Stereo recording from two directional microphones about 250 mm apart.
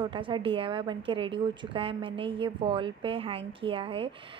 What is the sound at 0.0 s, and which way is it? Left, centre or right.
A woman's voice, centre.